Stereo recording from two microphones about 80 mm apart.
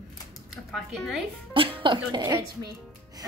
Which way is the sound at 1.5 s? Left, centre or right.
Right.